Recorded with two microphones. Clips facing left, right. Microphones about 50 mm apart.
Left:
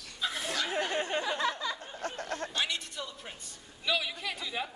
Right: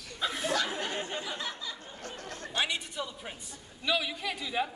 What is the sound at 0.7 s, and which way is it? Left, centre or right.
Speech, left.